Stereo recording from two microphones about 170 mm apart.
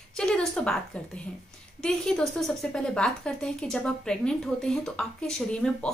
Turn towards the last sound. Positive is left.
turn(degrees=5)  # may be behind; listen again after turning